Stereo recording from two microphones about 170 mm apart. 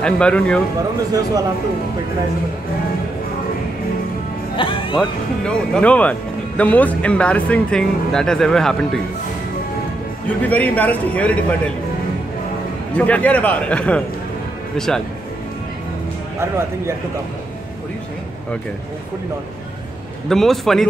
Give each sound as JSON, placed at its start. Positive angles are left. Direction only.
{"t": 0.0, "sound": "speech", "side_deg": 5}
{"t": 4.6, "sound": "music", "side_deg": 30}
{"t": 4.9, "sound": "speech", "side_deg": 5}
{"t": 10.5, "sound": "speech", "side_deg": 10}
{"t": 12.9, "sound": "speech", "side_deg": 10}
{"t": 16.3, "sound": "speech", "side_deg": -15}
{"t": 20.2, "sound": "a man's voice", "side_deg": 0}